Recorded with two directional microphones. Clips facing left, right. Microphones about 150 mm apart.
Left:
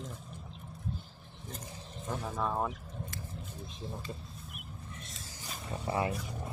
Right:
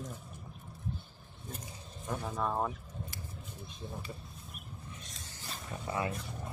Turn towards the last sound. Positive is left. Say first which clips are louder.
# left 3 dB
turn(degrees=25)  # may be behind; listen again after turning